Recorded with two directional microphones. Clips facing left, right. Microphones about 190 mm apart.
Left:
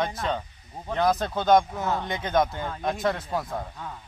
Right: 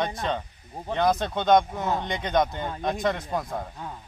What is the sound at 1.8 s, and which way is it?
Speech, 20° right (ahead or behind).